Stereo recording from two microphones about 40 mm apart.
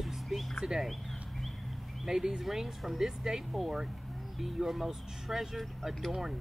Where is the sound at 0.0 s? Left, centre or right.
Centre.